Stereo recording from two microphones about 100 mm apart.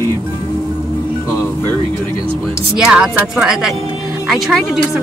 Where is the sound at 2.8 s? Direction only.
5° right (ahead or behind).